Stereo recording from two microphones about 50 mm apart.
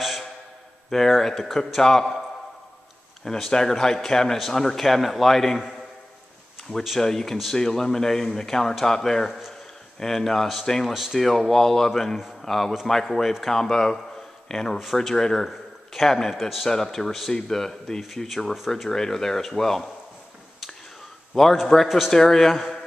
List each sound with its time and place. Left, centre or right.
0.8 s a man's voice: centre
3.3 s a man's voice: centre
7.0 s speech: centre
10.9 s speech: centre
11.1 s a man's voice: centre
18.7 s speech: centre
21.4 s speech: centre
21.8 s a man's voice: centre
22.1 s speech: centre